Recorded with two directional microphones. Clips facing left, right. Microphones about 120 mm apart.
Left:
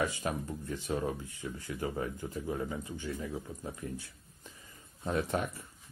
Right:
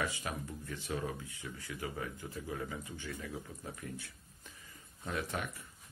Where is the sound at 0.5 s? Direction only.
30° left (ahead or behind).